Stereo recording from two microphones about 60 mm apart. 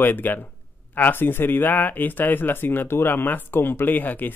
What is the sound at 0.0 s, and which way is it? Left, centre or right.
Speech, left.